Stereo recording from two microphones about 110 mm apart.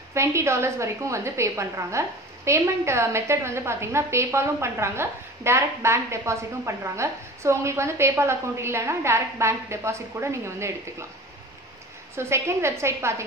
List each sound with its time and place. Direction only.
0.1 s a woman's voice: 25° right (ahead or behind)
12.2 s a woman's voice: 25° right (ahead or behind)